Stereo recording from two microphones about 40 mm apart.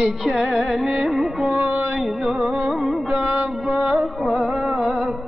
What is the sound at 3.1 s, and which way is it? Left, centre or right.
Music, right.